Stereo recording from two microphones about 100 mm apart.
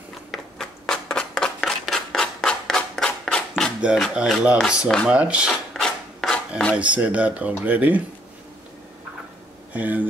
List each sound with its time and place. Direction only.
0.3 s a sound: 5° left (ahead or behind)
4.0 s speech: 5° right (ahead or behind)
4.6 s speech: 5° left (ahead or behind)
5.0 s speech: 10° right (ahead or behind)
5.5 s filing: 5° left (ahead or behind)
6.7 s speech: 15° right (ahead or behind)
9.8 s speech: 15° right (ahead or behind)